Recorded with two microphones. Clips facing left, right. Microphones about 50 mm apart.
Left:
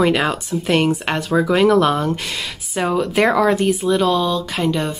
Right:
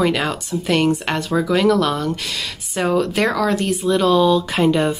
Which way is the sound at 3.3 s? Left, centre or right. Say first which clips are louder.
Left 3 dB; left.